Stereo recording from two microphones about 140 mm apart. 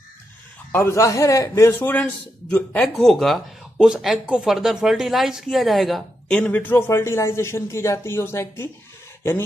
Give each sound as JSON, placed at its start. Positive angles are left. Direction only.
{"t": 0.7, "sound": "a man's voice", "side_deg": 20}